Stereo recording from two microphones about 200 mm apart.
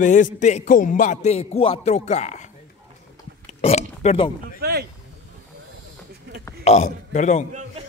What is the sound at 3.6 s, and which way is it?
Oink, 30° left (ahead or behind).